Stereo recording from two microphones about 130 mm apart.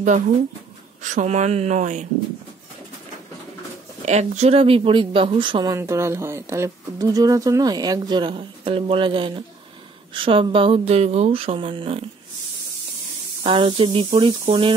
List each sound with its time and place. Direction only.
1.0 s speech: 65° right (ahead or behind)
4.0 s speech: 60° right (ahead or behind); by 5.7 s 40° right (ahead or behind)
5.7 s speech: 20° right (ahead or behind); by 12.0 s 45° right (ahead or behind)
13.4 s speech: 45° right (ahead or behind)